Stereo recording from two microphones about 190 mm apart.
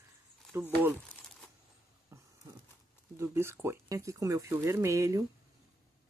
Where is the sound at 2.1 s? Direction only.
15° right (ahead or behind).